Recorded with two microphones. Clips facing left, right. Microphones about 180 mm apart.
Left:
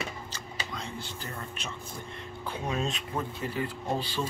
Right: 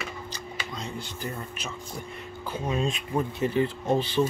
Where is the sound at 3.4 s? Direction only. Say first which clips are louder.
Right 8 dB; 20° right (ahead or behind).